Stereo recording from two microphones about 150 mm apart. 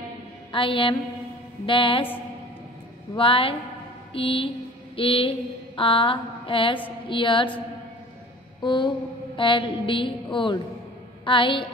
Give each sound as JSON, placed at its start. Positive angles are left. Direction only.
{"t": 0.5, "sound": "a woman's voice", "side_deg": 35}
{"t": 3.2, "sound": "a woman's voice", "side_deg": 35}
{"t": 8.6, "sound": "a woman's voice", "side_deg": 30}